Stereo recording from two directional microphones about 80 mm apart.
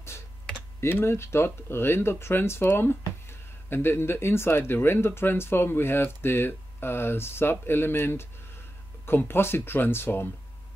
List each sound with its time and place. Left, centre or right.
0.7 s speech: left